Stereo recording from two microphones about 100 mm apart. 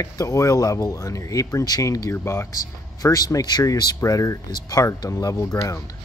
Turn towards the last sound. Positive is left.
turn(degrees=40)  # may be behind; listen again after turning